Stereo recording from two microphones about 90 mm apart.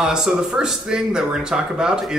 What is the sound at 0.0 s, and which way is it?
Speech, 5° right (ahead or behind).